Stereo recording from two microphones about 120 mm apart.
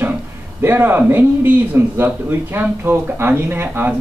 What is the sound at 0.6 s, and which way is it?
A man's voice, 20° right (ahead or behind).